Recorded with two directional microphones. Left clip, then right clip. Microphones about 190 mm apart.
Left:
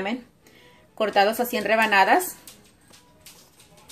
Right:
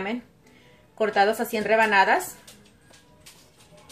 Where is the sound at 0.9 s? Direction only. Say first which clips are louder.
Left 1 dB; 50° left (ahead or behind).